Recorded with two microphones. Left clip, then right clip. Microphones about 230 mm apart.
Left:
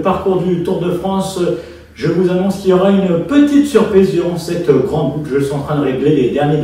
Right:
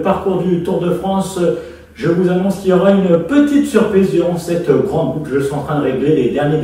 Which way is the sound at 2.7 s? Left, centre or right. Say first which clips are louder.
Right 1 dB; centre.